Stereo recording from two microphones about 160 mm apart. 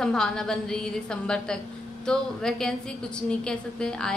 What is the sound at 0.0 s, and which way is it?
A woman's voice, 5° left (ahead or behind).